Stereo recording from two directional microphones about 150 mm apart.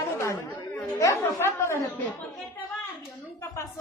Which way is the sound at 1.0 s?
20° left (ahead or behind).